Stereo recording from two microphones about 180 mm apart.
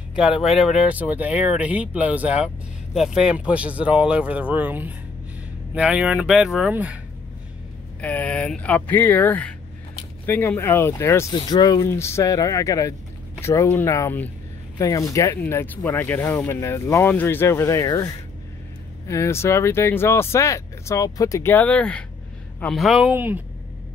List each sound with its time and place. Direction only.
0.4 s speech: centre (ahead or behind)
8.0 s speech: 10° left (ahead or behind)
19.0 s speech: 15° left (ahead or behind); by 23.4 s 10° right (ahead or behind)